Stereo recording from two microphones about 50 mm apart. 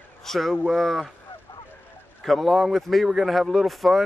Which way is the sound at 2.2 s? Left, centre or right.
Centre.